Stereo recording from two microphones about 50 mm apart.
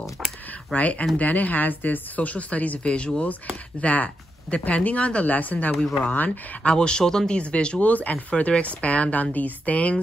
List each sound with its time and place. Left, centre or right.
0.2 s a sound: centre
0.7 s speech: left
6.6 s speech: centre